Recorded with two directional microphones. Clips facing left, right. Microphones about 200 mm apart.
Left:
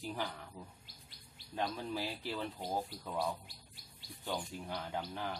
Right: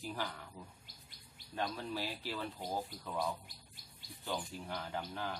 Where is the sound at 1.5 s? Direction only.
15° left (ahead or behind).